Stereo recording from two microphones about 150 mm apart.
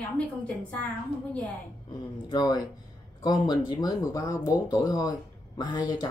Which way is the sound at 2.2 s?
25° left (ahead or behind).